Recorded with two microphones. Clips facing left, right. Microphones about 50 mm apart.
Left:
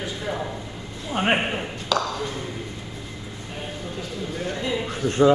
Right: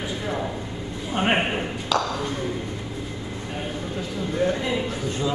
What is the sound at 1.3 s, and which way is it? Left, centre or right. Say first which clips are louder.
Speech: right 1 dB; centre.